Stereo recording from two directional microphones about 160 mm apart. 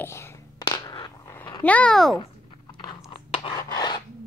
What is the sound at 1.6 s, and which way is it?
Speech, 5° left (ahead or behind).